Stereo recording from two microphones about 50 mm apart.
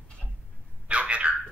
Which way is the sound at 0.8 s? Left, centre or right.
Right.